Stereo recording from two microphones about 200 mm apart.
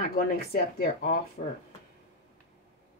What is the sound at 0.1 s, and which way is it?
Speech, 50° left (ahead or behind).